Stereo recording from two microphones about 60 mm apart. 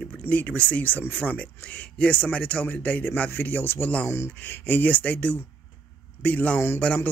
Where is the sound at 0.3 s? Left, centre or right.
Left.